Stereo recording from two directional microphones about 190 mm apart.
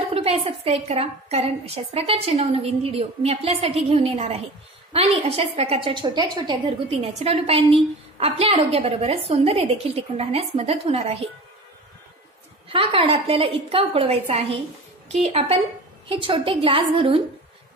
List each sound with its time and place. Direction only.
0.1 s a woman's voice: 30° right (ahead or behind)
12.6 s a woman's voice: 30° right (ahead or behind)